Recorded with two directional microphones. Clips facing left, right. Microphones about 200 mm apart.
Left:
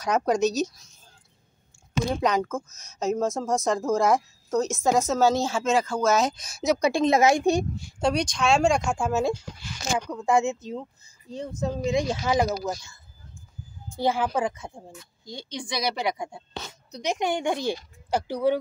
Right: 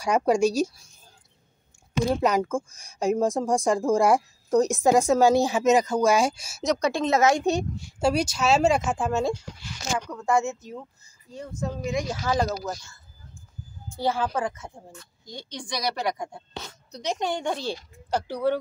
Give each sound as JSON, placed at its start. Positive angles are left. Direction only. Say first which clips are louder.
{"t": 0.0, "sound": "speech", "louder": "right 2 dB", "side_deg": -10}
{"t": 2.0, "sound": "speech", "louder": "right 2 dB", "side_deg": -10}
{"t": 6.6, "sound": "speech", "louder": "left 2 dB", "side_deg": 5}
{"t": 8.0, "sound": "speech", "louder": "right 1 dB", "side_deg": -5}
{"t": 9.9, "sound": "speech", "louder": "left 1 dB", "side_deg": 15}
{"t": 13.9, "sound": "speech", "louder": "left 1 dB", "side_deg": 15}